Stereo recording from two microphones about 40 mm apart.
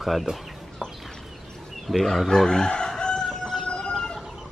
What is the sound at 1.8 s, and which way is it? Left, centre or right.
Speech, centre.